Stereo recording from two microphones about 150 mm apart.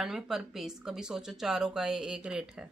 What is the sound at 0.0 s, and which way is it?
Speech, 5° right (ahead or behind).